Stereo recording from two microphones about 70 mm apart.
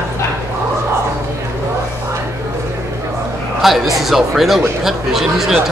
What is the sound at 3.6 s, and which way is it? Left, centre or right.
A man's voice, centre.